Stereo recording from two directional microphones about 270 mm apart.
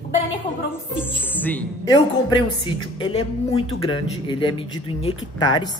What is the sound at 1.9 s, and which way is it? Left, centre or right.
A woman's voice, centre.